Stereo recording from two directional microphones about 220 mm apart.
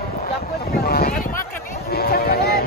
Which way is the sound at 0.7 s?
45° left (ahead or behind).